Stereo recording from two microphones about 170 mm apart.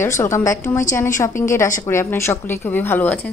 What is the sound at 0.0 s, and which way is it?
Speech, 15° left (ahead or behind).